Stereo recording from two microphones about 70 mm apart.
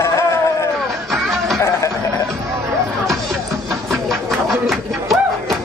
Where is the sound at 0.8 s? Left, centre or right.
Centre.